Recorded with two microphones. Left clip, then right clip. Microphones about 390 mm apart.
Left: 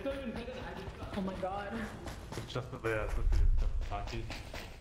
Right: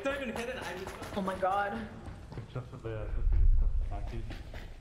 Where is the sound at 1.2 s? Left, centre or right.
Right.